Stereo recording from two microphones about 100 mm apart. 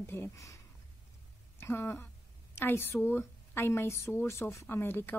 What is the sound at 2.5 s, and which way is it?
Speech, 25° left (ahead or behind).